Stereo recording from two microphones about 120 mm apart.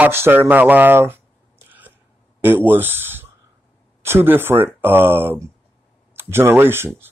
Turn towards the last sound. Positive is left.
turn(degrees=-20)  # may be behind; listen again after turning